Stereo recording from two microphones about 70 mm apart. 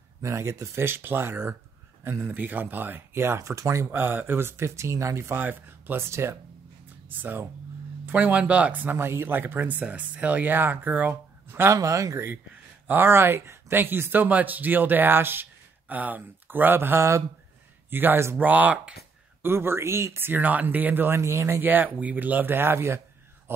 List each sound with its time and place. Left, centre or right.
0.2 s speech: right
5.4 s speech: right
7.1 s speech: right
8.9 s speech: right
11.7 s speech: right
12.8 s speech: right
18.4 s speech: right
19.4 s speech: right
21.6 s a man's voice: right